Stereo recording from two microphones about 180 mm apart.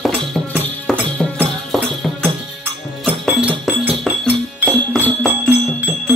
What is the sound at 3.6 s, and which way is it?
Music, 5° right (ahead or behind).